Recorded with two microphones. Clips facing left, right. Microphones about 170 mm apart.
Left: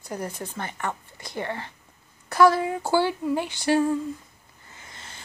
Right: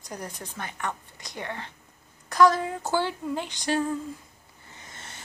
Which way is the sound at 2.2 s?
5° left (ahead or behind).